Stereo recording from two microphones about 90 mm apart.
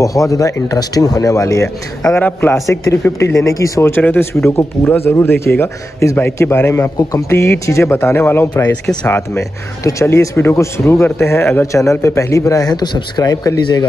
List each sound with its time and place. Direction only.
0.0 s speech: 40° left (ahead or behind)
2.1 s a man's voice: 20° left (ahead or behind)
2.7 s speech: 30° left (ahead or behind)
3.9 s a man's voice: 25° left (ahead or behind)
7.0 s speech: 45° left (ahead or behind)
7.2 s a man's voice: 30° left (ahead or behind); by 13.2 s 55° left (ahead or behind)
13.2 s speech: 45° left (ahead or behind)